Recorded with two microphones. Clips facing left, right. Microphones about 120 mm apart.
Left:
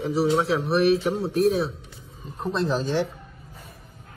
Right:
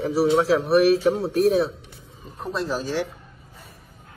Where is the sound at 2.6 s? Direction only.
10° right (ahead or behind).